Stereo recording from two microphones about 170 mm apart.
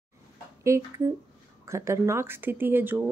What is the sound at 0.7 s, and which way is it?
Speech, 15° right (ahead or behind).